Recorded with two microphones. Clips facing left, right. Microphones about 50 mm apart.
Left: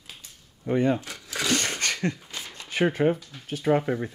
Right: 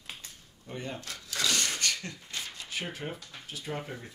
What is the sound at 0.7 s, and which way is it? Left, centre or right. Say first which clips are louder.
Speech: left 15 dB; left.